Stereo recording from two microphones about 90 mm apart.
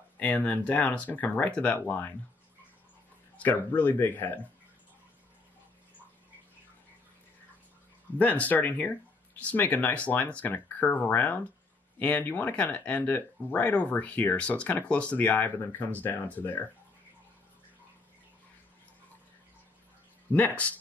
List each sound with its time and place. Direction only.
0.2 s speech: 15° left (ahead or behind)
3.4 s speech: 20° left (ahead or behind)
8.2 s speech: 15° left (ahead or behind)
20.3 s speech: 15° left (ahead or behind)